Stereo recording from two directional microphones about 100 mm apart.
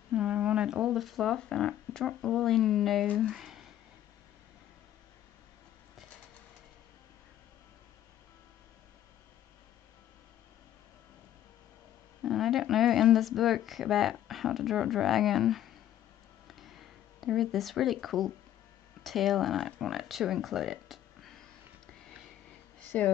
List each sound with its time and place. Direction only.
0.1 s speech: 15° right (ahead or behind)
12.2 s speech: centre (ahead or behind)
16.4 s a sound: centre (ahead or behind)
19.0 s speech: centre (ahead or behind)
22.8 s speech: 15° left (ahead or behind)